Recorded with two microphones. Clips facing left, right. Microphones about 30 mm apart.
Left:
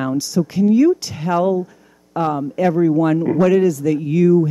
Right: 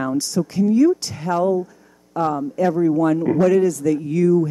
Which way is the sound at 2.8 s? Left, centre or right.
Centre.